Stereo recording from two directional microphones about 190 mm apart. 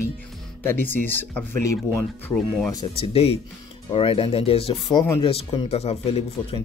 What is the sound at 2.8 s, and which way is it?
Speech, 30° left (ahead or behind).